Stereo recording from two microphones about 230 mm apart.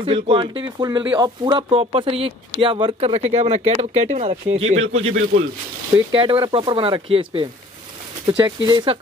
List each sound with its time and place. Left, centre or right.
0.0 s speech: right
4.5 s speech: right
6.1 s speech: right